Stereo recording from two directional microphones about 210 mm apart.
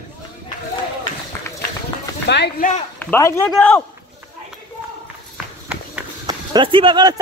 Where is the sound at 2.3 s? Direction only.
55° left (ahead or behind).